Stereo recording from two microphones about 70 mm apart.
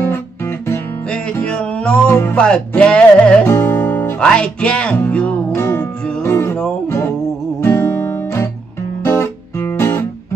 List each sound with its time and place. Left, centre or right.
1.1 s music: centre
3.4 s music: left
4.2 s music: centre
6.2 s music: left
7.6 s guitar: left